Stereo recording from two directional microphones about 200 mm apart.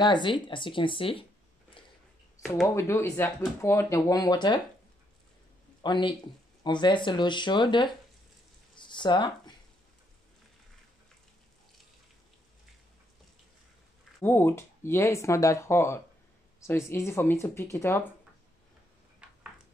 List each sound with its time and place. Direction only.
0.0 s speech: 25° left (ahead or behind)
2.4 s speech: centre (ahead or behind)
2.7 s speech: 15° left (ahead or behind)
5.8 s speech: 25° left (ahead or behind)
8.7 s a sound: 25° left (ahead or behind)
14.2 s speech: 10° left (ahead or behind)